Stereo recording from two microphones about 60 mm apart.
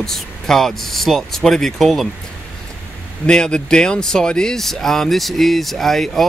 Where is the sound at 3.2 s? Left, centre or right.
Centre.